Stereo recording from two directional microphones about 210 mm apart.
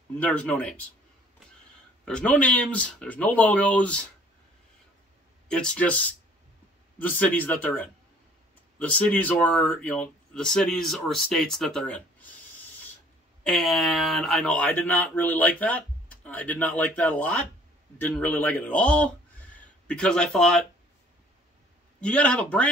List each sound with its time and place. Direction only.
0.2 s speech: 5° left (ahead or behind)
2.0 s speech: 5° left (ahead or behind)
5.5 s speech: 5° left (ahead or behind)
13.4 s speech: centre (ahead or behind)
22.0 s speech: 5° left (ahead or behind)